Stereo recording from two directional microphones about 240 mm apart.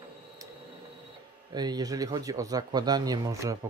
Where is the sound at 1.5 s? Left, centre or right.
Centre.